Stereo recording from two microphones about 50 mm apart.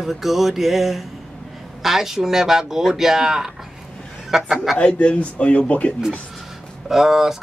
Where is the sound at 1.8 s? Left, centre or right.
Centre.